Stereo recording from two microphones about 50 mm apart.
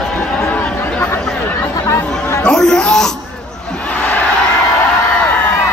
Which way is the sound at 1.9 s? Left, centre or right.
Left.